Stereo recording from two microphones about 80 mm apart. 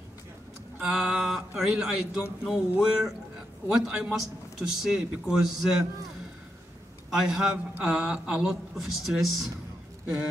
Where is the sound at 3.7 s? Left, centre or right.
Centre.